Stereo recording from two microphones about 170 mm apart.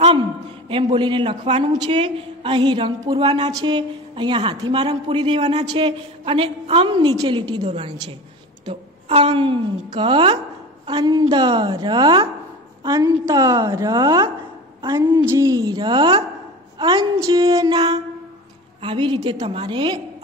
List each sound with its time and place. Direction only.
0.7 s a woman's voice: 30° right (ahead or behind)